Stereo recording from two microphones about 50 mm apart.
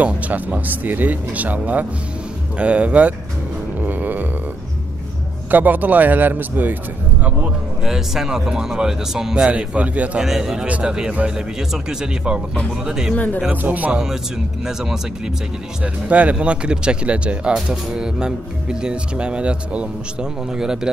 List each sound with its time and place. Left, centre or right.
0.0 s speech: right
3.8 s music: right
5.5 s speech: right
7.8 s speech: centre
9.5 s speech: right
10.2 s speech: centre
13.1 s speech: left
13.5 s speech: right
14.6 s speech: centre
15.8 s speech: right
20.5 s speech: centre